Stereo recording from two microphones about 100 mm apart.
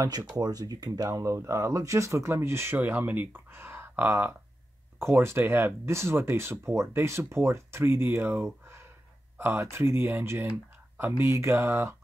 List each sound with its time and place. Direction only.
0.3 s speech: 40° right (ahead or behind)